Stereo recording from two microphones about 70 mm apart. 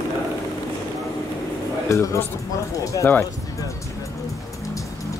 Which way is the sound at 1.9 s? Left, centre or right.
Left.